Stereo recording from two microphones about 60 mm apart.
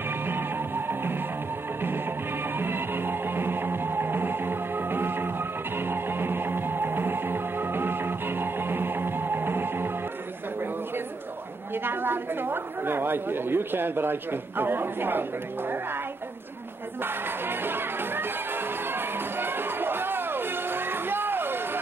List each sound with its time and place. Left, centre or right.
0.3 s music: right
2.5 s music: right
11.7 s speech: right
17.0 s music: right